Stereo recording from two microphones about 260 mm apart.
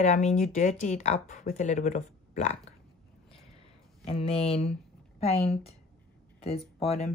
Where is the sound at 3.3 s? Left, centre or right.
Left.